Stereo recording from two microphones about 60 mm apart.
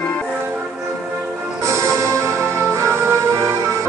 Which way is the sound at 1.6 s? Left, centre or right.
Right.